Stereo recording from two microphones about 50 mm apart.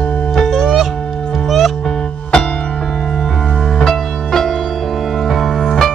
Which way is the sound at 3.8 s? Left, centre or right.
Centre.